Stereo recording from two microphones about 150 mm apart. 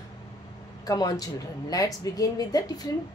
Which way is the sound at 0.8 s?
25° left (ahead or behind).